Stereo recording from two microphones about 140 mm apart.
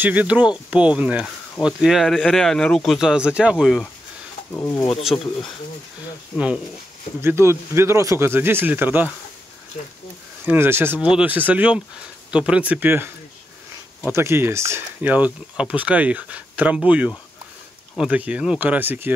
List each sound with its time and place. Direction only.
0.0 s speech: 10° right (ahead or behind)
4.5 s speech: 20° left (ahead or behind)
5.1 s speech: 40° left (ahead or behind)
6.3 s speech: 5° right (ahead or behind)
7.2 s speech: 20° right (ahead or behind)
10.4 s speech: 15° right (ahead or behind)
14.1 s speech: 20° right (ahead or behind)